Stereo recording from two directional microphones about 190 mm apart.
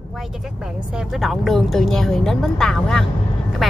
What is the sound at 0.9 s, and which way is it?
Speech, centre (ahead or behind).